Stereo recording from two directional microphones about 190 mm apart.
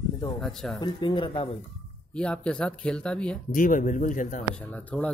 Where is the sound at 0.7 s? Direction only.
25° left (ahead or behind).